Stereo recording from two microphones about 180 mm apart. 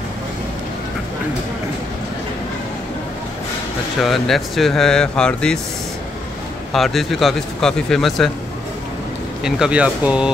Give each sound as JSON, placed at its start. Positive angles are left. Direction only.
{"t": 4.0, "sound": "speech", "side_deg": 0}
{"t": 6.7, "sound": "speech", "side_deg": 0}
{"t": 9.4, "sound": "speech", "side_deg": -5}